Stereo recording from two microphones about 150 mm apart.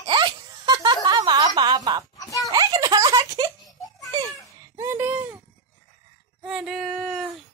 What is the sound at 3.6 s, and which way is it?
Baby laughter, centre (ahead or behind).